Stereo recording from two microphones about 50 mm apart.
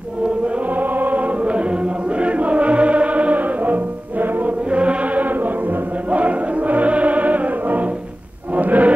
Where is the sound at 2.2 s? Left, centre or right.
Right.